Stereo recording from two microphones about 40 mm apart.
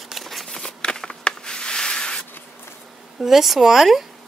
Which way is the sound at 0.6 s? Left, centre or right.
Left.